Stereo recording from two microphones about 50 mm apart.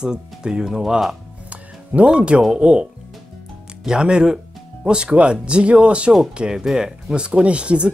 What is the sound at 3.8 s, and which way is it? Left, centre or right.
A man's voice, centre.